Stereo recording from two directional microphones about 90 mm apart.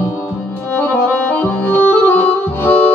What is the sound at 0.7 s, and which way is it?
Accordion, 20° left (ahead or behind).